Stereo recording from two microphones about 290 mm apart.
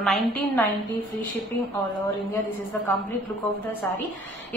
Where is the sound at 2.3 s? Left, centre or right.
Centre.